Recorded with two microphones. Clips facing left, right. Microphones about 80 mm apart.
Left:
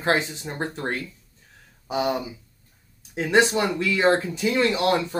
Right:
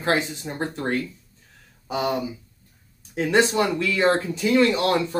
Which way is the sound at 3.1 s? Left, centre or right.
Left.